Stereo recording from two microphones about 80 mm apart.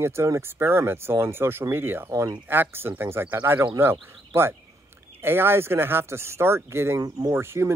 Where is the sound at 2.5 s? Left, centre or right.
Right.